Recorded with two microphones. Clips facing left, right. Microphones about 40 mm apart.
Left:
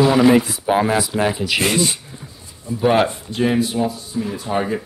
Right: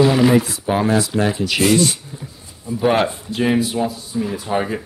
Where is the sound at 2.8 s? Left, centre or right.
Centre.